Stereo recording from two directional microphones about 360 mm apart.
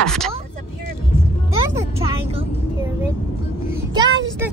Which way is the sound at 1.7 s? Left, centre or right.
Centre.